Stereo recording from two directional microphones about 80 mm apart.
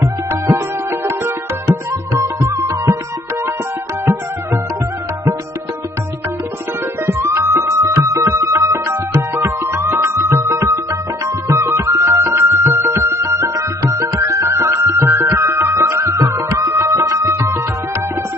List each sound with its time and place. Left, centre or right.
0.0 s music: right
4.0 s music: right
7.1 s music: right